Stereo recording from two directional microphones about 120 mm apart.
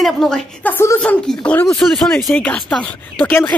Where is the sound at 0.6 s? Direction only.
20° left (ahead or behind).